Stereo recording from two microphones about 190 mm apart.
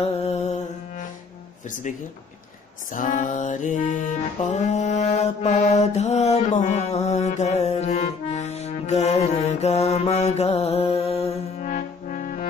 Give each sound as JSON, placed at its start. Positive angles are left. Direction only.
{"t": 0.0, "sound": "music", "side_deg": 35}
{"t": 1.7, "sound": "speech", "side_deg": 40}
{"t": 2.9, "sound": "music", "side_deg": 40}
{"t": 11.7, "sound": "trombone", "side_deg": 45}